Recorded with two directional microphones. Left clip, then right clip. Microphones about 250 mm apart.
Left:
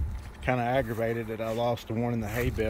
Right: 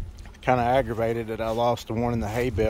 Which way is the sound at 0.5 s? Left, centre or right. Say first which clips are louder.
Right 6 dB; centre.